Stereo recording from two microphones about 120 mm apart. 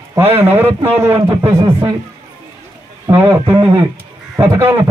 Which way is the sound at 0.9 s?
20° right (ahead or behind).